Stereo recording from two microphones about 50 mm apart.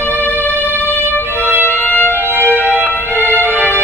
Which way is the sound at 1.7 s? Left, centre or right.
Left.